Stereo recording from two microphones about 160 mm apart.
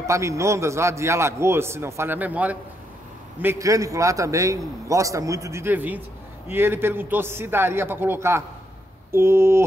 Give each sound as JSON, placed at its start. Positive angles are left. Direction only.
{"t": 0.0, "sound": "a man's voice", "side_deg": -20}